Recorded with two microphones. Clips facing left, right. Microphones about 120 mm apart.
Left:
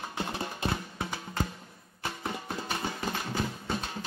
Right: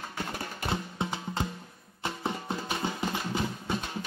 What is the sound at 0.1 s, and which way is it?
Music, 20° left (ahead or behind).